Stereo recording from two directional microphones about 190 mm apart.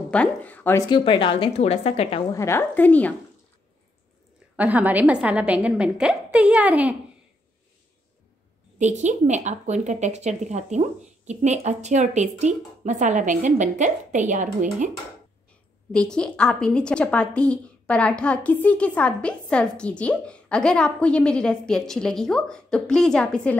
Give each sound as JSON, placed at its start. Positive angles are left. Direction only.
{"t": 0.1, "sound": "a woman's voice", "side_deg": 5}
{"t": 0.8, "sound": "a woman's voice", "side_deg": 25}
{"t": 2.3, "sound": "a woman's voice", "side_deg": 15}
{"t": 4.6, "sound": "a woman's voice", "side_deg": -10}
{"t": 8.7, "sound": "speech", "side_deg": -40}
{"t": 15.9, "sound": "a woman's voice", "side_deg": 5}